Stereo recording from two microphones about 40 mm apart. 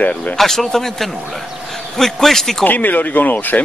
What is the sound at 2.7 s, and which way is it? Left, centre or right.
Speech, left.